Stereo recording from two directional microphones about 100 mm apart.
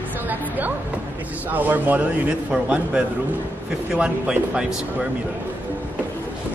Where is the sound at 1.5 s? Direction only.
20° right (ahead or behind).